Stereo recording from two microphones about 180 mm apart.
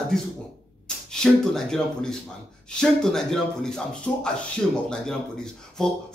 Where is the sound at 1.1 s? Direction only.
5° left (ahead or behind).